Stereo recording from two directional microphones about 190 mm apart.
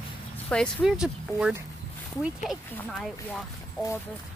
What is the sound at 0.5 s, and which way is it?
Speech, centre (ahead or behind).